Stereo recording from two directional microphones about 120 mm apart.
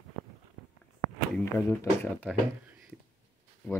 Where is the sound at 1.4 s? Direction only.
20° left (ahead or behind).